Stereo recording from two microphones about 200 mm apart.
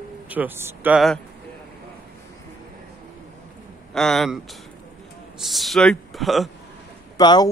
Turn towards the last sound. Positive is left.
turn(degrees=20)  # may be behind; listen again after turning